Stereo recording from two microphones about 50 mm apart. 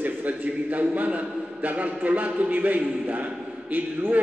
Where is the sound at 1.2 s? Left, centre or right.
Centre.